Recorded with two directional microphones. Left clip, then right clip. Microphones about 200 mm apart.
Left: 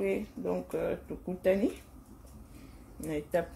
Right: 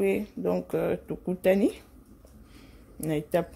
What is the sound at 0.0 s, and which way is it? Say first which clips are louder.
Speech: right 6 dB; 50° right (ahead or behind).